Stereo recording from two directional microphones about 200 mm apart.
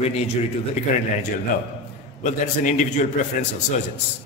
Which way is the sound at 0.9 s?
35° left (ahead or behind).